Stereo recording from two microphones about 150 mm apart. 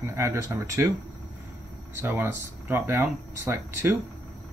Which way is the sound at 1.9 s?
15° right (ahead or behind).